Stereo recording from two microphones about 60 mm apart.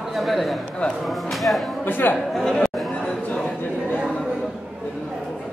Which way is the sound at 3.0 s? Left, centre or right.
Centre.